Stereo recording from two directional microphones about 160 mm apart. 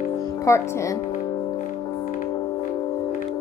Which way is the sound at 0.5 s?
20° left (ahead or behind).